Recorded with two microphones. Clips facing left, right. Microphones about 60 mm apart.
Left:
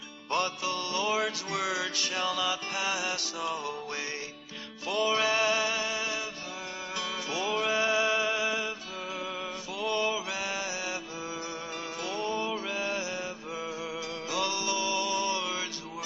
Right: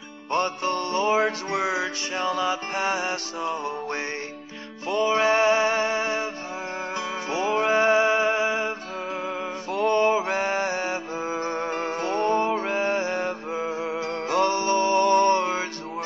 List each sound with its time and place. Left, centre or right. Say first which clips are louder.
0.3 s music: right 6 dB; right
9.7 s mantra: right 10 dB; right